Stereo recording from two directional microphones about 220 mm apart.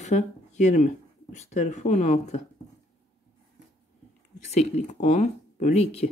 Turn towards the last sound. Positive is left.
turn(degrees=30)  # may be behind; listen again after turning